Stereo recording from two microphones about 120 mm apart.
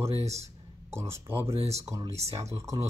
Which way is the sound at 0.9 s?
20° right (ahead or behind).